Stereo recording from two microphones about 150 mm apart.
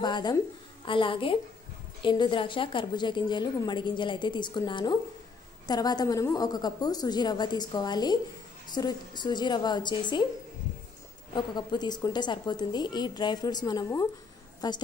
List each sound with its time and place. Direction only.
0.0 s a woman's voice: 30° left (ahead or behind)
11.3 s speech: 30° left (ahead or behind)